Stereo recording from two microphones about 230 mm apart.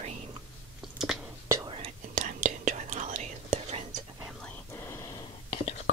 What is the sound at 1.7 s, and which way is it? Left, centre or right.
Whispering, right.